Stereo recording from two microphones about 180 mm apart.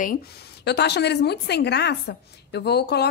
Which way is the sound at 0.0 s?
55° left (ahead or behind).